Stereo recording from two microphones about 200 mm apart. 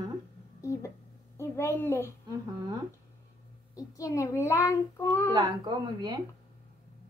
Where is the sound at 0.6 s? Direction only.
15° left (ahead or behind).